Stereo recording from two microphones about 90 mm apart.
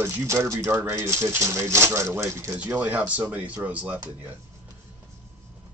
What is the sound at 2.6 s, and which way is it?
Speech, 15° right (ahead or behind).